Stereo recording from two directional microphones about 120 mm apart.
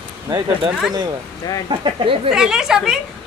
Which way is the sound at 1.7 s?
45° right (ahead or behind).